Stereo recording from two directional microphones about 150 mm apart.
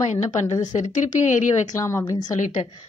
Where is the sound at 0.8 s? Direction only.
55° left (ahead or behind).